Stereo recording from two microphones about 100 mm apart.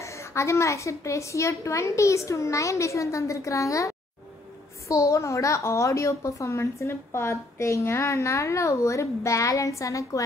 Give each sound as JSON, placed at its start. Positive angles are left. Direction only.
{"t": 0.0, "sound": "a woman's voice", "side_deg": 30}